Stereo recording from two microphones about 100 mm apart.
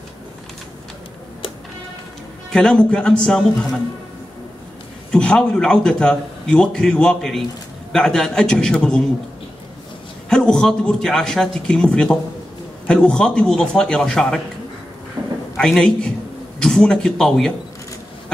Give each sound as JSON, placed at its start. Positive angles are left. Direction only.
{"t": 2.5, "sound": "a man's voice", "side_deg": 5}
{"t": 5.1, "sound": "a man's voice", "side_deg": 10}
{"t": 10.3, "sound": "a man's voice", "side_deg": 5}
{"t": 15.2, "sound": "a sound", "side_deg": -25}
{"t": 15.5, "sound": "a man's voice", "side_deg": 5}